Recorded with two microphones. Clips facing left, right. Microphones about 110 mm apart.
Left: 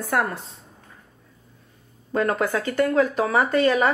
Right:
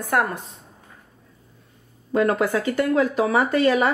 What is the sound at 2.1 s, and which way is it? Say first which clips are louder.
Speech: right 2 dB; 45° left (ahead or behind).